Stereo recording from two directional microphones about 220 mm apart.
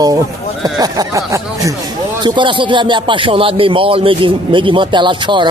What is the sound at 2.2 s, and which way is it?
Music, 20° right (ahead or behind).